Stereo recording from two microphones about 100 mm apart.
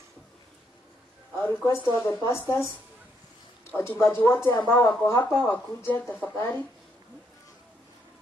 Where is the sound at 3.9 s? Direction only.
25° left (ahead or behind).